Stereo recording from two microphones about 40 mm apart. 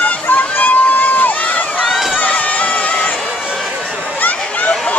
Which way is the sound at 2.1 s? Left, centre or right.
Left.